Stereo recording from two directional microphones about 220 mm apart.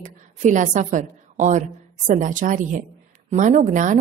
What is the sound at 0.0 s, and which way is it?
A woman's voice, 35° right (ahead or behind).